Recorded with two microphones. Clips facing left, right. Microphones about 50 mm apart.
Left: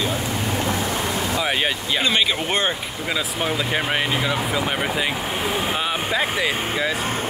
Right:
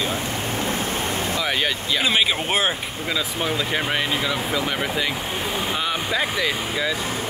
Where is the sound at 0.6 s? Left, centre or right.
Right.